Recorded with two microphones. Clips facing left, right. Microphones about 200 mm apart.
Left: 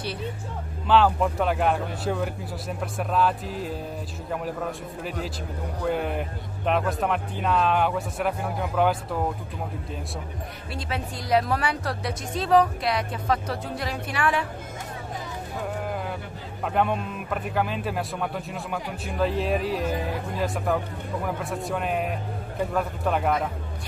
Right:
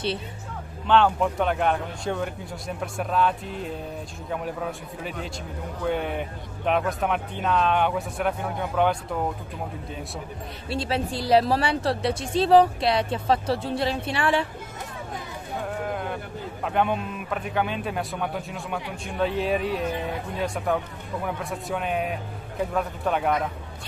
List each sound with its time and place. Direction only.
0.8 s speech: 5° left (ahead or behind)
10.7 s speech: 30° right (ahead or behind)
15.9 s a sound: centre (ahead or behind)
16.6 s speech: centre (ahead or behind)